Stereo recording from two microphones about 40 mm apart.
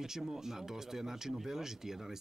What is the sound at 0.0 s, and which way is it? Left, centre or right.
Speech, centre.